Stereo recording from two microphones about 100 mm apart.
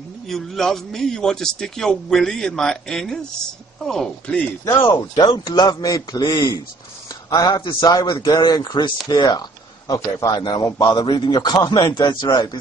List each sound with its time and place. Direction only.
0.3 s a man's voice: 5° left (ahead or behind)
5.1 s a man's voice: 50° left (ahead or behind)
9.1 s camera: 45° left (ahead or behind)
10.3 s a man's voice: 45° left (ahead or behind)